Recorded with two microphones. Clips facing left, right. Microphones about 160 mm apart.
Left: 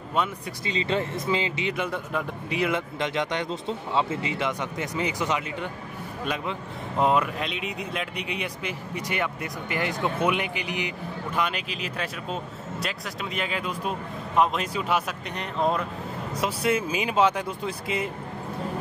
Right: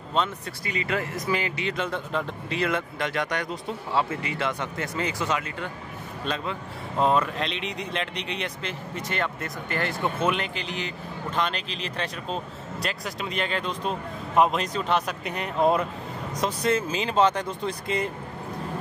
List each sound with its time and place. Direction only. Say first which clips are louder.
0.7 s speech: left 2 dB; 25° left (ahead or behind)
7.3 s speech: right 1 dB; 5° left (ahead or behind)
15.2 s speech: right 3 dB; 5° right (ahead or behind)
16.3 s speech: even; 10° left (ahead or behind)